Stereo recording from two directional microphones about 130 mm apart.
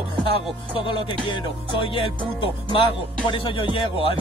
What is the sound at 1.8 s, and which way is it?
Music, 45° left (ahead or behind).